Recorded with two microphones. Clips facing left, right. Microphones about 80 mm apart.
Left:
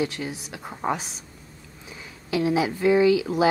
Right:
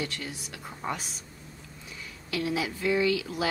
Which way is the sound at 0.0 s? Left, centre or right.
Left.